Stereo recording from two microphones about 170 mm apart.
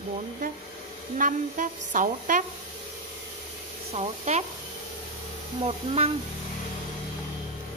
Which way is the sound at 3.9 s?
40° right (ahead or behind).